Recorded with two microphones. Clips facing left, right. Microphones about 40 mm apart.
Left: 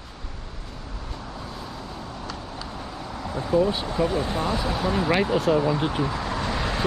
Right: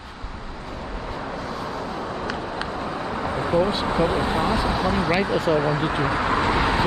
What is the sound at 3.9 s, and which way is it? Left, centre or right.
Speech, right.